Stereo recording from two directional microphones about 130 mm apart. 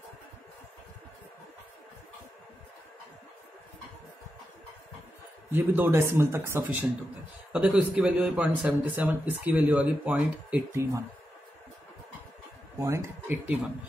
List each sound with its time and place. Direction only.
5.5 s a man's voice: 15° right (ahead or behind)
10.7 s speech: 20° right (ahead or behind)
12.7 s speech: 20° right (ahead or behind)